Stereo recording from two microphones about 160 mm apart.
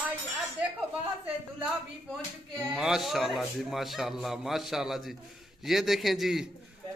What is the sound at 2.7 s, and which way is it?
A man's voice, centre (ahead or behind).